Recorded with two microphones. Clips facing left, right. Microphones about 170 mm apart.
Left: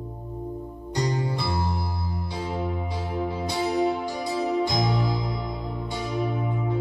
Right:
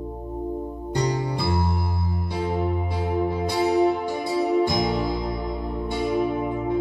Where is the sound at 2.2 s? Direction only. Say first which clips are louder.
Right 5 dB; 55° right (ahead or behind).